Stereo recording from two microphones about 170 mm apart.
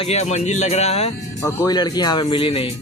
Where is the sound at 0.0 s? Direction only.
40° left (ahead or behind).